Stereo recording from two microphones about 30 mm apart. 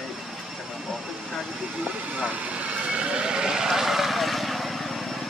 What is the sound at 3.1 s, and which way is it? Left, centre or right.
Vehicle, right.